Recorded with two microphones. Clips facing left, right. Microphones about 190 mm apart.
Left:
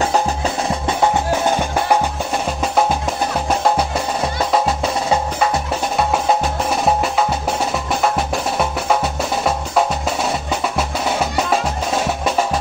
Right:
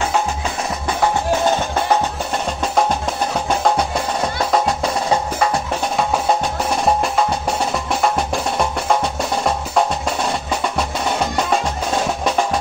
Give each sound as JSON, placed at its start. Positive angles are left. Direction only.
{"t": 0.1, "sound": "music", "side_deg": 35}
{"t": 3.4, "sound": "music", "side_deg": 5}
{"t": 8.0, "sound": "music", "side_deg": 0}